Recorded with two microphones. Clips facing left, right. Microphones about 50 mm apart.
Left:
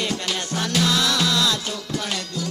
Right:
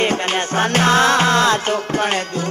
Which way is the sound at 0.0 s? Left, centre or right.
Right.